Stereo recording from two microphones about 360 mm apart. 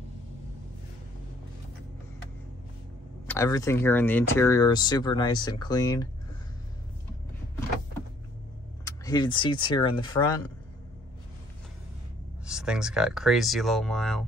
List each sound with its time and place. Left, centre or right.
3.3 s speech: centre
8.8 s speech: centre
12.4 s speech: centre